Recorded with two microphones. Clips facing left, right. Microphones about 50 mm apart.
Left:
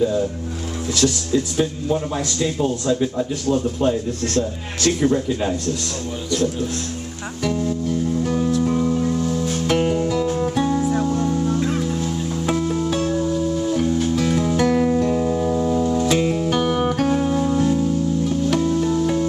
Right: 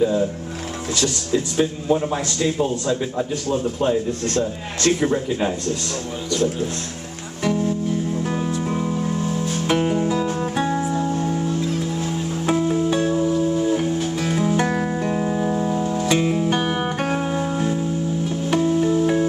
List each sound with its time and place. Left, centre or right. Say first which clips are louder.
1.3 s speech: even; centre
8.3 s music: left 4 dB; centre
11.4 s music: left 2 dB; left
12.0 s music: left 1 dB; centre
16.5 s music: left 3 dB; right